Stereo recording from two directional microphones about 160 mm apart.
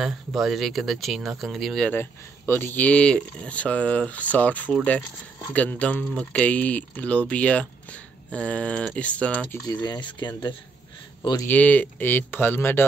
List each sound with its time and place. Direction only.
0.0 s speech: centre (ahead or behind)
9.7 s speech: 25° left (ahead or behind)
11.4 s speech: 10° left (ahead or behind)